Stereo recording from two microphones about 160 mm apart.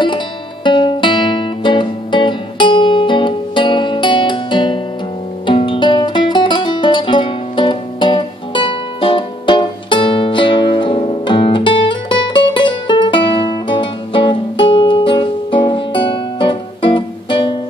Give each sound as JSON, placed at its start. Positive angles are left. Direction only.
{"t": 0.7, "sound": "music", "side_deg": 30}